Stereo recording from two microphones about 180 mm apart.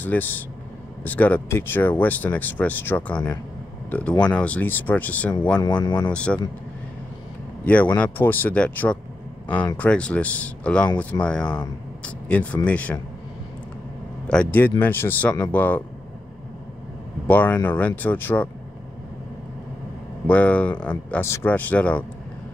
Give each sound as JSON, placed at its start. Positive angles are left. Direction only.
{"t": 0.0, "sound": "speech", "side_deg": 10}
{"t": 5.9, "sound": "speech", "side_deg": 25}
{"t": 6.1, "sound": "speech", "side_deg": 5}
{"t": 7.6, "sound": "speech", "side_deg": 10}
{"t": 14.3, "sound": "speech", "side_deg": 10}
{"t": 17.3, "sound": "speech", "side_deg": 10}
{"t": 20.2, "sound": "speech", "side_deg": 5}